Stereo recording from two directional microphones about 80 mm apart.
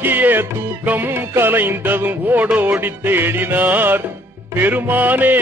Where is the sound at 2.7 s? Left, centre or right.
Right.